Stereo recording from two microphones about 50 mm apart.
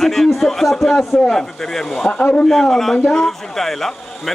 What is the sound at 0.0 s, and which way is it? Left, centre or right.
A man's voice, centre.